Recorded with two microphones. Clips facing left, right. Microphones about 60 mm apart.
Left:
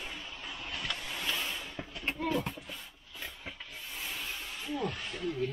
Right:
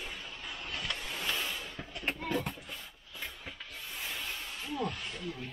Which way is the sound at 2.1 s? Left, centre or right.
Centre.